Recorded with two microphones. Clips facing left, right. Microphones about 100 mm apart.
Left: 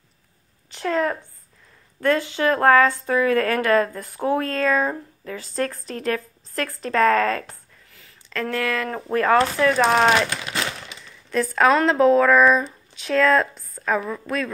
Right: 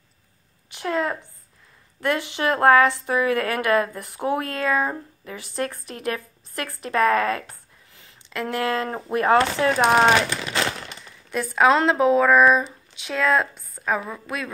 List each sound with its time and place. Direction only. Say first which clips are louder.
0.7 s a sound: left 2 dB; 20° right (ahead or behind)
2.0 s speech: left 3 dB; 20° right (ahead or behind)
11.2 s speech: even; 10° right (ahead or behind)